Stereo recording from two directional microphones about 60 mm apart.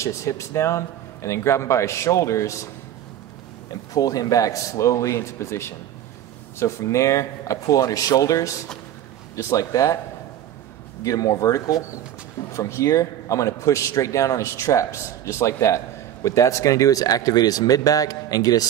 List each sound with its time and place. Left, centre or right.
0.0 s a man's voice: left
3.9 s a man's voice: left
11.1 s speech: left
12.5 s a man's voice: left